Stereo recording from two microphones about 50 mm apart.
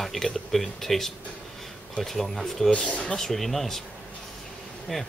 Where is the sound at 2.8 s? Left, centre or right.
Left.